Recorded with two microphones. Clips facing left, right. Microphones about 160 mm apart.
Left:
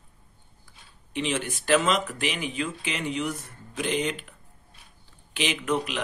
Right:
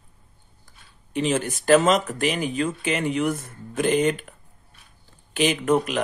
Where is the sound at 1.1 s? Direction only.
40° right (ahead or behind).